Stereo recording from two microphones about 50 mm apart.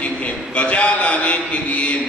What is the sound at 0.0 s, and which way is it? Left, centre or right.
A man's voice, left.